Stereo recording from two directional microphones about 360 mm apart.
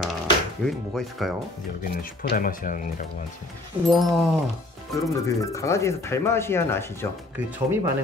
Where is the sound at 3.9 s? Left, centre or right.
Centre.